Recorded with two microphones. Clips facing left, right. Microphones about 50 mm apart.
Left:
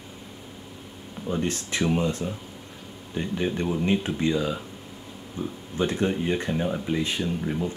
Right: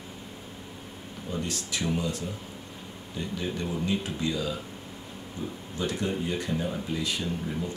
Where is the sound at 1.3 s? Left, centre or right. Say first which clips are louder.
Left 5 dB; left.